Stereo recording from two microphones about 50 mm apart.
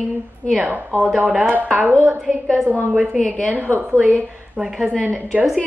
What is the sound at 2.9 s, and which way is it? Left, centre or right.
Speech, centre.